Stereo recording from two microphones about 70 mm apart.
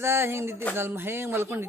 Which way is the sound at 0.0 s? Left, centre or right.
Right.